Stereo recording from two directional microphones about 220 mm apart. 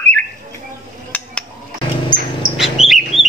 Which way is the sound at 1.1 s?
5° left (ahead or behind).